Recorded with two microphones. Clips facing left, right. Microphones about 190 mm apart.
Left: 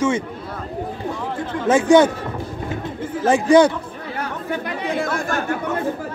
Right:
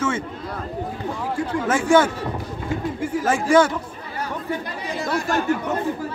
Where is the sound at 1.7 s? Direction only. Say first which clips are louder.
Left 5 dB; 20° left (ahead or behind).